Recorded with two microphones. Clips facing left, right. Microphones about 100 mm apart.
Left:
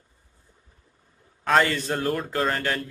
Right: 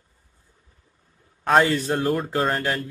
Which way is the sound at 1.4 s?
20° right (ahead or behind).